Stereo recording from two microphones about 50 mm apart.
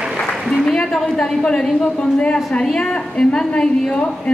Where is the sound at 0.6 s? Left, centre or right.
Centre.